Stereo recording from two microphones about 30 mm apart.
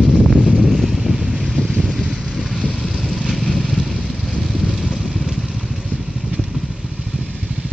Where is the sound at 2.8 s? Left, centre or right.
Centre.